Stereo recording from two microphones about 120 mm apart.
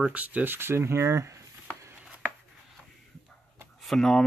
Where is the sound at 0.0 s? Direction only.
10° right (ahead or behind).